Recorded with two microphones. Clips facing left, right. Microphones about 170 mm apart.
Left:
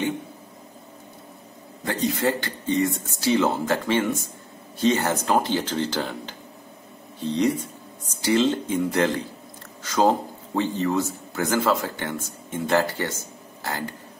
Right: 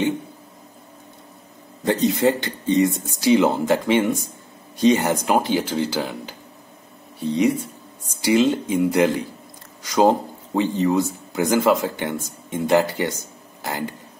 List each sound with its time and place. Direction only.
1.9 s a man's voice: 20° right (ahead or behind)